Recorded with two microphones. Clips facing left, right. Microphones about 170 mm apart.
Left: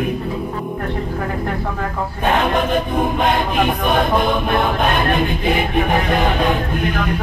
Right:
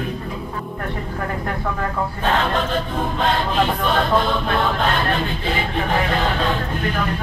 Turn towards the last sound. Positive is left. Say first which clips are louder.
# left 4 dB
turn(degrees=15)  # may be behind; listen again after turning